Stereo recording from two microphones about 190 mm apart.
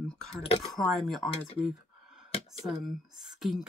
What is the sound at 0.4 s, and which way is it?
Speech, 30° left (ahead or behind).